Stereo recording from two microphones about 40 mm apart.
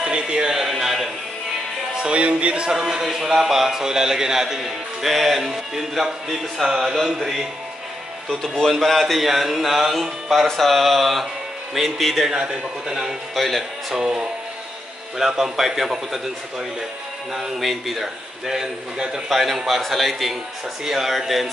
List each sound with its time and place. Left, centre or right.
0.0 s music: right
0.6 s a sound: centre
2.0 s music: right
2.7 s a man's voice: centre
8.3 s speech: centre
12.3 s a man's voice: centre
13.3 s speech: centre
13.9 s a man's voice: centre
17.3 s a man's voice: centre